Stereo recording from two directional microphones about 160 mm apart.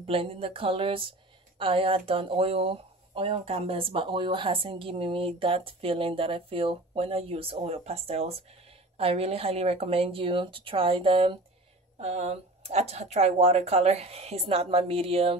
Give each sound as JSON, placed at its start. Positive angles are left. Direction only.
{"t": 0.0, "sound": "speech", "side_deg": -35}